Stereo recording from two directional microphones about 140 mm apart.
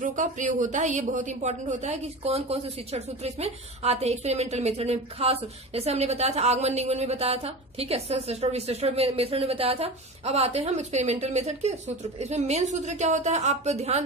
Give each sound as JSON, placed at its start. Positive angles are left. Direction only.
{"t": 0.0, "sound": "a woman's voice", "side_deg": -65}